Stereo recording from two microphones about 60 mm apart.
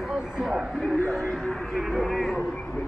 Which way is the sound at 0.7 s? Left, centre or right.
Centre.